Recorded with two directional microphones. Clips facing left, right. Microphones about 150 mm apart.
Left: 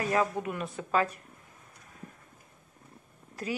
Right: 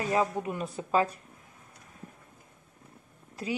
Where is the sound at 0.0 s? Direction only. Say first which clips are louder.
Even; 25° right (ahead or behind).